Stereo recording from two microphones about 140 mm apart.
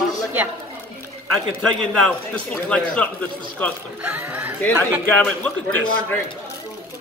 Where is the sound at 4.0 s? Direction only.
10° right (ahead or behind).